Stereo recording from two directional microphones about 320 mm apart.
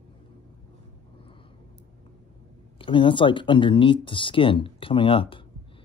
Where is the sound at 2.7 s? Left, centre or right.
Centre.